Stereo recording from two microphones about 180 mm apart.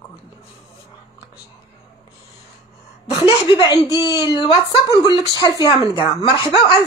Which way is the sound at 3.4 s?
20° left (ahead or behind).